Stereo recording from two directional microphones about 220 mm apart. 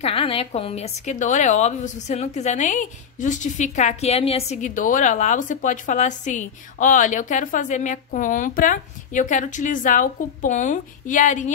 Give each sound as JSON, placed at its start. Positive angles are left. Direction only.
{"t": 0.0, "sound": "a woman's voice", "side_deg": 25}